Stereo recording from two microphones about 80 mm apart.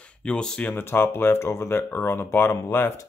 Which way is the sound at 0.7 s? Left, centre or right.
Left.